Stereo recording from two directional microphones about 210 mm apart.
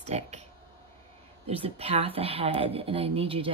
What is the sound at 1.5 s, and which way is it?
A woman's voice, 25° right (ahead or behind).